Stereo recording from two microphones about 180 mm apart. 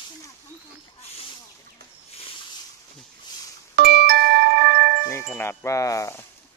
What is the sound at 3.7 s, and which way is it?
Music, 60° right (ahead or behind).